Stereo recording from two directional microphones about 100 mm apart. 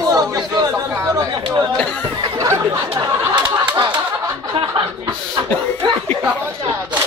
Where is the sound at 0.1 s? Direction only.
35° right (ahead or behind).